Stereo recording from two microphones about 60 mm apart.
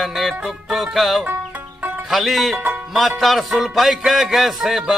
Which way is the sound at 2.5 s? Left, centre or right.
Right.